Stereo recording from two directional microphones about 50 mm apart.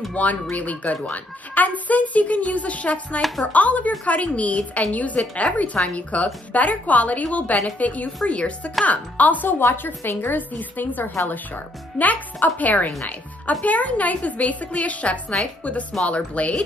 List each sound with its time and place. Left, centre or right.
0.1 s a woman's voice: left
3.2 s speech: centre
3.5 s a woman's voice: left
9.6 s a woman's voice: left
15.9 s speech: centre
16.3 s a woman's voice: left